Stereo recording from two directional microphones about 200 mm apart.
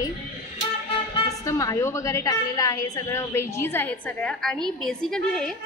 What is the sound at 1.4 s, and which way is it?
A woman's voice, 15° left (ahead or behind).